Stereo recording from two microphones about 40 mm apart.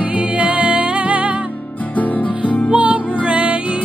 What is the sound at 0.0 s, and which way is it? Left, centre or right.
Music, right.